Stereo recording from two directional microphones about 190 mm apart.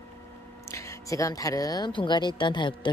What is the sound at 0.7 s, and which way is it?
Speech, 15° left (ahead or behind).